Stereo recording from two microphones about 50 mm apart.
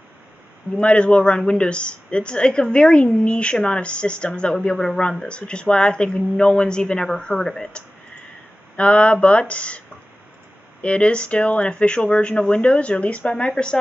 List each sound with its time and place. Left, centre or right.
0.7 s speech: left
8.7 s speech: left